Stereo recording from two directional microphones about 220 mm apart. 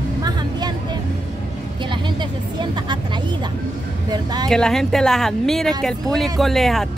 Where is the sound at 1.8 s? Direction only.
20° right (ahead or behind).